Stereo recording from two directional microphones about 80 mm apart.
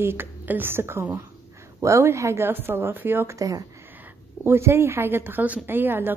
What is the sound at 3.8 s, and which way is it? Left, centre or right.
A woman's voice, right.